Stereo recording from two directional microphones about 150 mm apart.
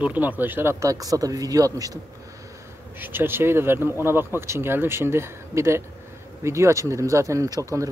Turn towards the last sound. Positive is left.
turn(degrees=-20)  # may be behind; listen again after turning